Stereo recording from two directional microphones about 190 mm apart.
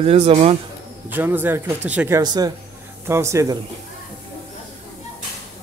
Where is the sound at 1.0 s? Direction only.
10° right (ahead or behind).